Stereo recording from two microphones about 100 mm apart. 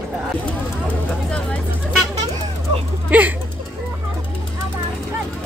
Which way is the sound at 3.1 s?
15° right (ahead or behind).